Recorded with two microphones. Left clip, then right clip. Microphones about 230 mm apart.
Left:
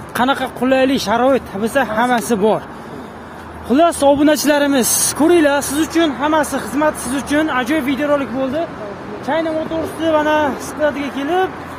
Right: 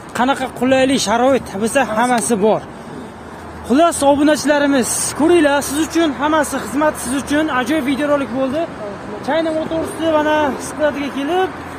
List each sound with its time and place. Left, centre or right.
0.1 s speech: centre
3.6 s speech: centre
4.3 s speech: left
5.2 s speech: left